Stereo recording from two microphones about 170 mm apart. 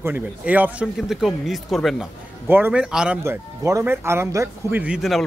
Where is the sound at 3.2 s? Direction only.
15° right (ahead or behind).